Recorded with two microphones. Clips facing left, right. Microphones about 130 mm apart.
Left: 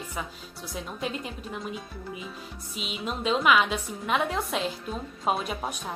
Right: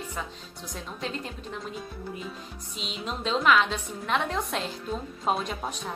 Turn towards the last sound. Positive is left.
turn(degrees=5)  # may be behind; listen again after turning